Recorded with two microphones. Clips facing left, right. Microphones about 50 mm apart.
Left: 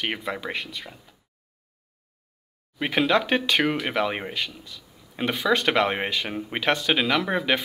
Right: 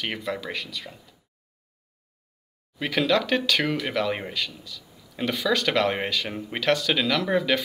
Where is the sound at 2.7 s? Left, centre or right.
Left.